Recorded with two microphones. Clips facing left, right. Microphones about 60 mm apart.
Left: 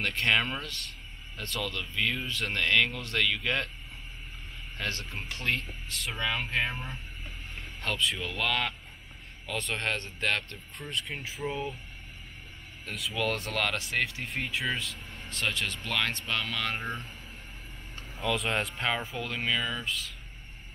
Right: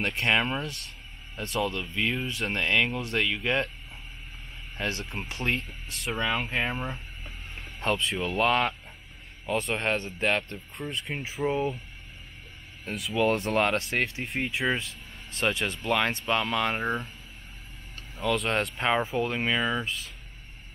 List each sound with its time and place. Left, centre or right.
0.0 s speech: right
4.7 s speech: right
9.6 s speech: centre
12.8 s speech: right
14.2 s speech: centre
18.1 s speech: centre
18.8 s speech: centre